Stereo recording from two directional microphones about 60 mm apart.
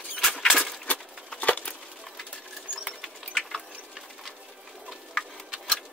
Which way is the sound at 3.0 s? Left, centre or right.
Centre.